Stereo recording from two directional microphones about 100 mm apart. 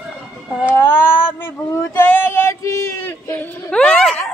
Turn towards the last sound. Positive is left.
turn(degrees=10)  # may be behind; listen again after turning